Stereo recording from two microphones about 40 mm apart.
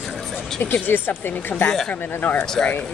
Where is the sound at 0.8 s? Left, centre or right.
Left.